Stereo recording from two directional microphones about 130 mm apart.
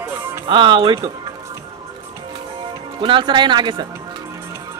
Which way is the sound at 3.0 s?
40° right (ahead or behind).